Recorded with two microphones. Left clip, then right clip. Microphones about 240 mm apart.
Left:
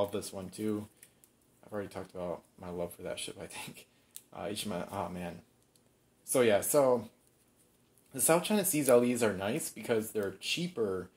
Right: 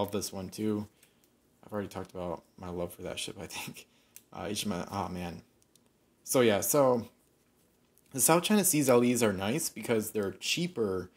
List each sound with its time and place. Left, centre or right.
0.3 s speech: right
8.1 s speech: right